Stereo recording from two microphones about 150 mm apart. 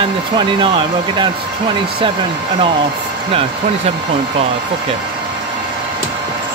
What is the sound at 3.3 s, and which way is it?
Speech, 40° right (ahead or behind).